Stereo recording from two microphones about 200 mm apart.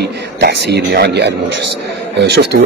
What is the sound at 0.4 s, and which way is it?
A man's voice, 55° right (ahead or behind).